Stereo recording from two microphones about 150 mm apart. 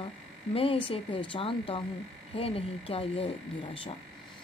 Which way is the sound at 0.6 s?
35° left (ahead or behind).